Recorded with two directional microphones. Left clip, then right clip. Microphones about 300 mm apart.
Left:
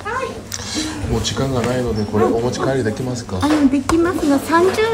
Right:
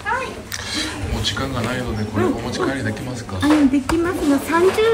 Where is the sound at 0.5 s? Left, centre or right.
Centre.